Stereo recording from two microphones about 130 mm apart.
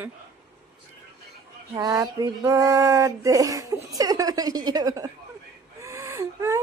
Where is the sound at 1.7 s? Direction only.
25° right (ahead or behind).